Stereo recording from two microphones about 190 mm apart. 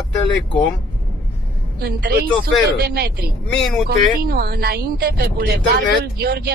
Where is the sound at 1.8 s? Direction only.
55° right (ahead or behind).